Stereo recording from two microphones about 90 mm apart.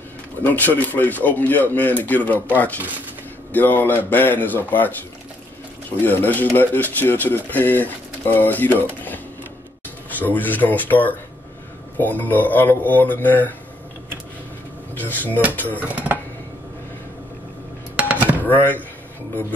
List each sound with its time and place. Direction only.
0.4 s speech: 20° left (ahead or behind)
3.5 s speech: 20° left (ahead or behind)
15.0 s speech: 20° left (ahead or behind)
15.8 s speech: 20° right (ahead or behind)
17.9 s chopping: 15° right (ahead or behind)
18.4 s speech: 20° left (ahead or behind)